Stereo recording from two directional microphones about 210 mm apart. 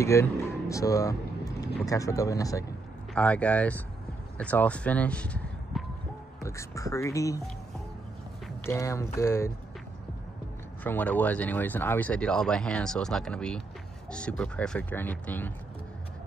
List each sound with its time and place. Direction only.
0.0 s speech: 15° left (ahead or behind)
8.6 s speech: 15° left (ahead or behind)
10.8 s speech: 10° left (ahead or behind)